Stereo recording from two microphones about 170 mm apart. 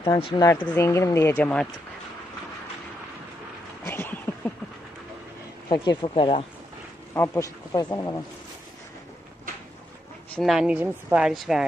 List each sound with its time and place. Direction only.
0.0 s speech: 30° left (ahead or behind)
0.5 s speech: 10° left (ahead or behind)
3.8 s a sound: 15° left (ahead or behind)
5.7 s speech: 25° left (ahead or behind)
10.3 s a woman's voice: centre (ahead or behind)